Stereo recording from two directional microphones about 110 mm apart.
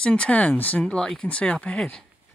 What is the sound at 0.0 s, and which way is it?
Speech, 10° left (ahead or behind).